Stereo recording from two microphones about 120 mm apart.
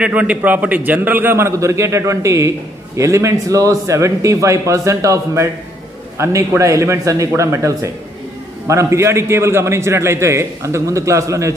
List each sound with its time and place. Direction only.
0.0 s a man's voice: 10° right (ahead or behind)